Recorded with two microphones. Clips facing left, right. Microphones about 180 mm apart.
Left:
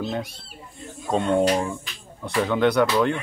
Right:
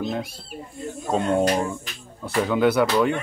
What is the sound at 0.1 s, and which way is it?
Speech, centre (ahead or behind).